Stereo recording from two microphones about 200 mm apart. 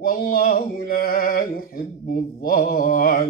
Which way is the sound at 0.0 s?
45° left (ahead or behind).